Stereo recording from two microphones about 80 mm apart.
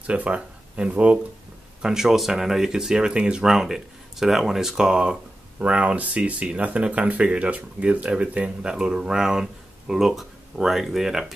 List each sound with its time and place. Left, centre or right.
0.0 s speech: centre
1.8 s speech: centre